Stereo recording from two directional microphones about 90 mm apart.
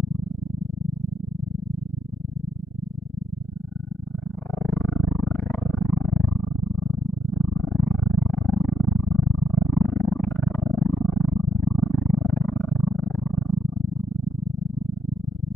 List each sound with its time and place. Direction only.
4.6 s a sound: 20° left (ahead or behind)
9.8 s roaring cats: 20° left (ahead or behind)
11.1 s purr: 15° left (ahead or behind)